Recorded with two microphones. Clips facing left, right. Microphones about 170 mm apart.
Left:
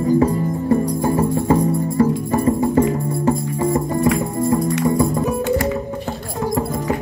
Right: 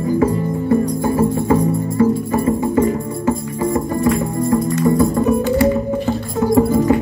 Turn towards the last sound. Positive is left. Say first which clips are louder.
# right 2 dB
turn(degrees=20)  # may be behind; listen again after turning